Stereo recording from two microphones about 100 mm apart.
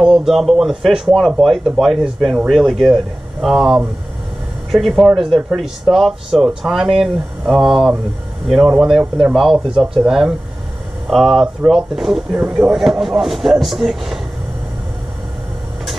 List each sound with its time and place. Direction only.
0.0 s speech: centre (ahead or behind)